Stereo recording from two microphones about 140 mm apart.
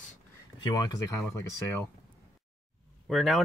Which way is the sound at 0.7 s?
30° left (ahead or behind).